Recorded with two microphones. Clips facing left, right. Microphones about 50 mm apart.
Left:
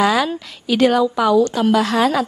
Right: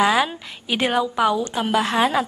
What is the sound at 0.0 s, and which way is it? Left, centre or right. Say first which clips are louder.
A woman's voice: left 2 dB; centre.